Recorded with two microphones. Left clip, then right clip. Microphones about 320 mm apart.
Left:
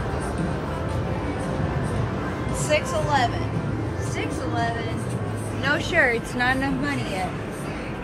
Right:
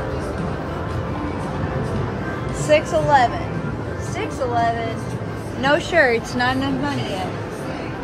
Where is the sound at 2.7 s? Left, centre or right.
Right.